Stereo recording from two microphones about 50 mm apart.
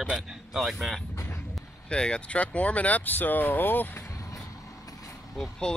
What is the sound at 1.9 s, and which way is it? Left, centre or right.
Speech, centre.